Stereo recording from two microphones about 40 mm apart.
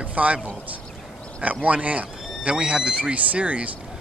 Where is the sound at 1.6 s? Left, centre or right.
Right.